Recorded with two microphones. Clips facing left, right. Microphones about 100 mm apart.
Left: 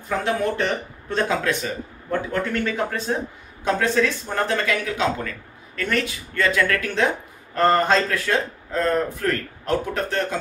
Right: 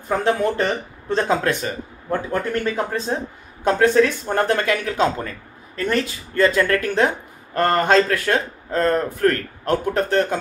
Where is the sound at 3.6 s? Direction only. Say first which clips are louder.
Right 5 dB; 50° right (ahead or behind).